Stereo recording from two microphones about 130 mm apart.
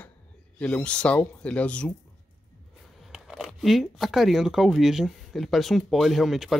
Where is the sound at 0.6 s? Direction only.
10° left (ahead or behind).